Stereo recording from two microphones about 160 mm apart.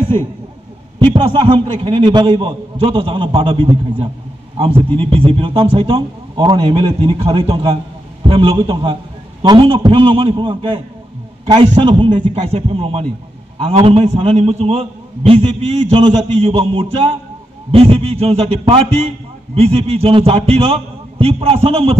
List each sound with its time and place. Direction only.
0.9 s a man's voice: 30° right (ahead or behind)